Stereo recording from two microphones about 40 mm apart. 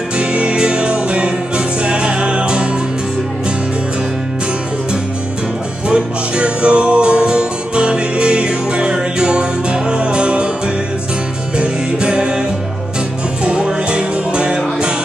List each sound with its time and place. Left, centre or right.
0.2 s music: right
5.9 s music: right
11.5 s music: right